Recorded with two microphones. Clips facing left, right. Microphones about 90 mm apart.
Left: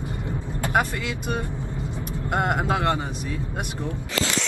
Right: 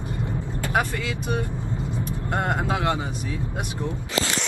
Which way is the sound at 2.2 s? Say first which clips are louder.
Left 2 dB; 15° left (ahead or behind).